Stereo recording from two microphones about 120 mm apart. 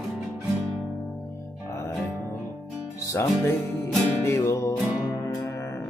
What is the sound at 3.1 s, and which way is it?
Music, 25° left (ahead or behind).